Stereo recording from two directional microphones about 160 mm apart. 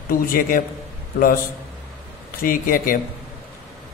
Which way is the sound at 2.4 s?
65° left (ahead or behind).